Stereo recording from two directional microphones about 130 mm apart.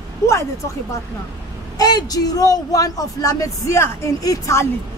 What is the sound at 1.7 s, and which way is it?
Speech, 30° left (ahead or behind).